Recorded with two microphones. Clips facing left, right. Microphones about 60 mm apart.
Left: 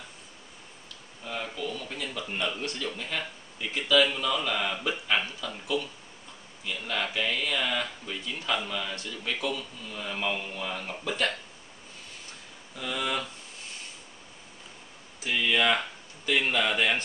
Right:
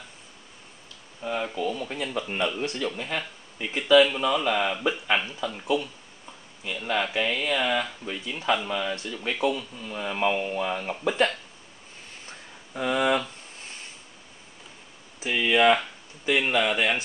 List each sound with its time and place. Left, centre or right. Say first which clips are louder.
1.2 s speech: right 6 dB; centre
12.7 s speech: right 8 dB; right
15.1 s speech: right 4 dB; centre